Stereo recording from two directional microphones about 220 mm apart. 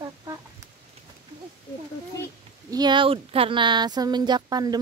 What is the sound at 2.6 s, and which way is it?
Speech, 20° right (ahead or behind).